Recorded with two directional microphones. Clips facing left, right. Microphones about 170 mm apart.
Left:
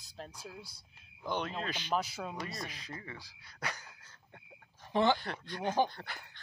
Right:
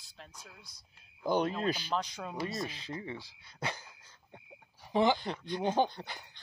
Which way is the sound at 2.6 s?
30° right (ahead or behind).